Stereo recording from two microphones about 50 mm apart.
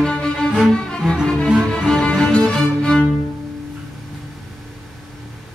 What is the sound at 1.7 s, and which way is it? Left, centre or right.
Music, centre.